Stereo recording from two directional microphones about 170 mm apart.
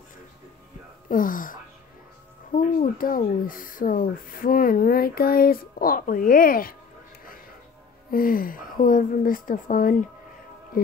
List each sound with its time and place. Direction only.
1.0 s speech: 55° left (ahead or behind)
8.1 s speech: 60° left (ahead or behind)